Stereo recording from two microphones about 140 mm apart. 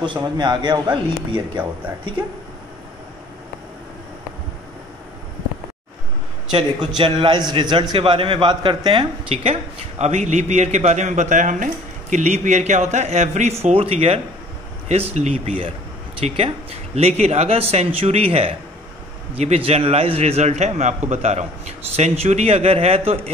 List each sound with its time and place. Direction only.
0.0 s speech: 35° right (ahead or behind)
7.0 s speech: 35° right (ahead or behind)